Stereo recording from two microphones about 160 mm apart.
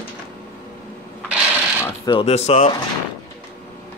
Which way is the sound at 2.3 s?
45° left (ahead or behind).